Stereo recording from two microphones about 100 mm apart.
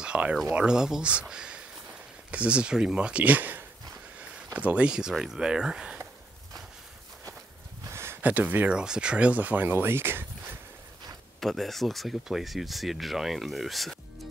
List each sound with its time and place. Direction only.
0.0 s a sound: 10° right (ahead or behind)
0.5 s speech: 5° right (ahead or behind)
7.9 s speech: 25° right (ahead or behind)
11.3 s speech: 5° left (ahead or behind)